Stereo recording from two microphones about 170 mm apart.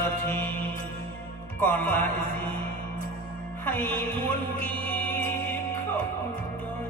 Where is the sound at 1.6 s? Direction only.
10° left (ahead or behind).